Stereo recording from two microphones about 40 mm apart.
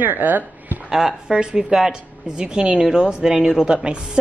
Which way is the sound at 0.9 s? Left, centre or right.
Centre.